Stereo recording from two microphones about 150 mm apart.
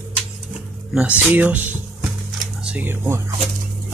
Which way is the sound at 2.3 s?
10° right (ahead or behind).